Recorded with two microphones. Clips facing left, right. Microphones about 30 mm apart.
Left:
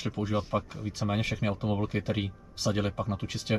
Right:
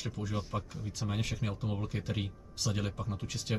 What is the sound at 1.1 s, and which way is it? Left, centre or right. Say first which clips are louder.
Speech: left 7 dB; left.